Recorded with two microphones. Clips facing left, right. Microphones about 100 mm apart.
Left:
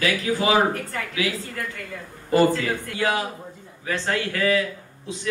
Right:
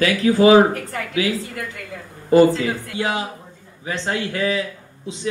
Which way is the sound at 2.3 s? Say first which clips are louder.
Right 5 dB; 20° right (ahead or behind).